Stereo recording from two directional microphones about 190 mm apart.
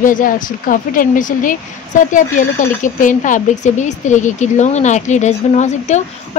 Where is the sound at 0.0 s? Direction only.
45° left (ahead or behind).